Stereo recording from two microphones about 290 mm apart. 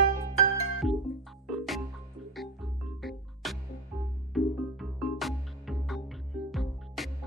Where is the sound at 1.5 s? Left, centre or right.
Centre.